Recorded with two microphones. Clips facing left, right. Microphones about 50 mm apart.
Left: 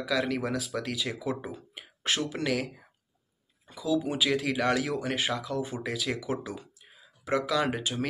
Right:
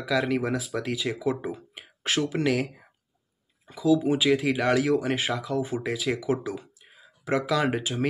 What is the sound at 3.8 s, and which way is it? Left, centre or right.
Speech, right.